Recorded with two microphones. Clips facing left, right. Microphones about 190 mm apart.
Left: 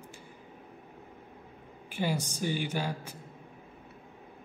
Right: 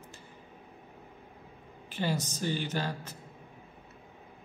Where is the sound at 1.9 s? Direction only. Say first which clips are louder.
Left 1 dB; 10° left (ahead or behind).